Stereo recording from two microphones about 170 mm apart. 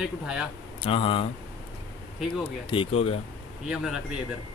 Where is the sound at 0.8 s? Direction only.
30° left (ahead or behind).